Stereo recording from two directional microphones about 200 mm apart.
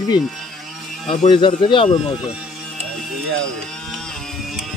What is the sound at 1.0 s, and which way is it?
Speech, 35° left (ahead or behind).